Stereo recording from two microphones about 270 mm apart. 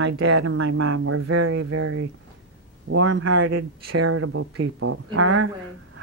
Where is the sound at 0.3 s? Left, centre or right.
Right.